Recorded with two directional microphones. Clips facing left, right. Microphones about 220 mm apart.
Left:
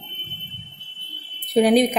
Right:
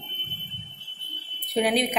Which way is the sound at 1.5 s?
40° left (ahead or behind).